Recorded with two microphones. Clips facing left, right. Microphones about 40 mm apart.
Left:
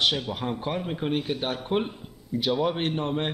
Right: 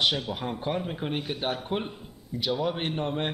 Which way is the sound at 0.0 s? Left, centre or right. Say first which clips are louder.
Left 1 dB; centre.